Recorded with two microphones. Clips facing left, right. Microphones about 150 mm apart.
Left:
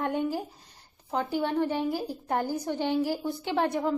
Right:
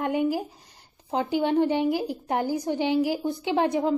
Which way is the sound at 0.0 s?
10° right (ahead or behind).